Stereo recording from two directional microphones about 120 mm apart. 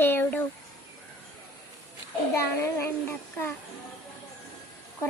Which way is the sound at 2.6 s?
20° left (ahead or behind).